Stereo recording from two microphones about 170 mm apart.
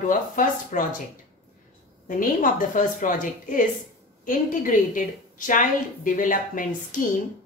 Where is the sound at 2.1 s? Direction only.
50° left (ahead or behind).